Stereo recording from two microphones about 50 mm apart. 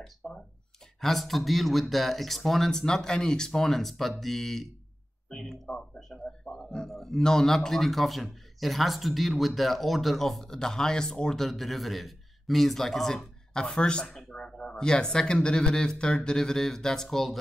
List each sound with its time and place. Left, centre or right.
0.2 s speech: centre